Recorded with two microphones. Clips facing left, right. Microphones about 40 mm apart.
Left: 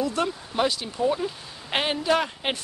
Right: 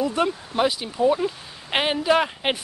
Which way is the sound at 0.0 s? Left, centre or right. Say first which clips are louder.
Right 3 dB; centre.